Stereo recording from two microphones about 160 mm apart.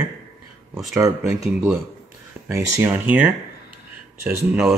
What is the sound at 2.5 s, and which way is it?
Speech, 15° right (ahead or behind).